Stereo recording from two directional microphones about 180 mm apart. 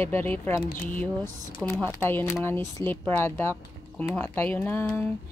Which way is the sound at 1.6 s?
10° left (ahead or behind).